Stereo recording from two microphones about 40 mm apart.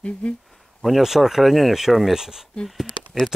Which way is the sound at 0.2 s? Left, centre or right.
Left.